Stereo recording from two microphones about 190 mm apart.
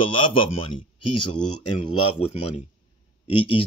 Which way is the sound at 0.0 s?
25° left (ahead or behind).